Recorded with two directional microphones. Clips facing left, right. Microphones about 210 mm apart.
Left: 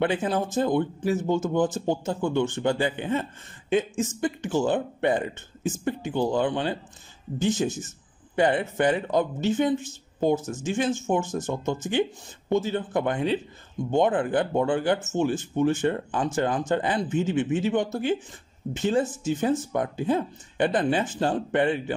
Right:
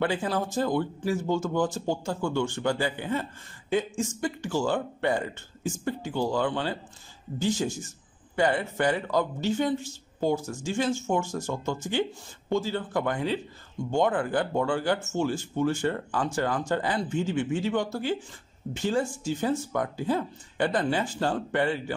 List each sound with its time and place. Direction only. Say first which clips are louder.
0.0 s speech: left 3 dB; 20° left (ahead or behind)